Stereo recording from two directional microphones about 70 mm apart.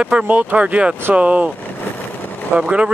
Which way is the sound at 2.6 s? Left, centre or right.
Centre.